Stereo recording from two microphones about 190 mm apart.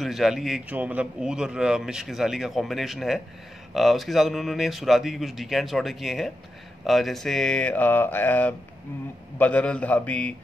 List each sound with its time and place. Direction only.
0.0 s a man's voice: centre (ahead or behind)